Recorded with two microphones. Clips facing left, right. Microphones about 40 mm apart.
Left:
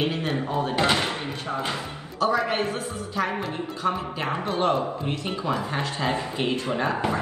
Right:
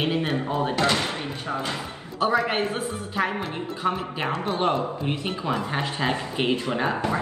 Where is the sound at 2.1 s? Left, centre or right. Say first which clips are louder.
Right 1 dB; right.